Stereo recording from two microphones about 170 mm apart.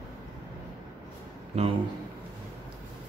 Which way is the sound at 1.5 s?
35° right (ahead or behind).